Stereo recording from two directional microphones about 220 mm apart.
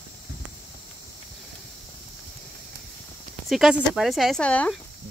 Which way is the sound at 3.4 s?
Centre (ahead or behind).